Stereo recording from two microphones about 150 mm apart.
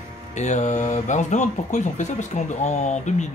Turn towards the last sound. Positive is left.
turn(degrees=50)  # may be behind; listen again after turning